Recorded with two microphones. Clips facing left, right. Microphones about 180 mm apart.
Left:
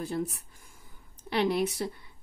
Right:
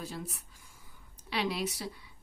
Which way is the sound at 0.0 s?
55° left (ahead or behind).